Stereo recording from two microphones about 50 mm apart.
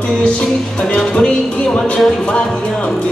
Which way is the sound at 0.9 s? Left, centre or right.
Left.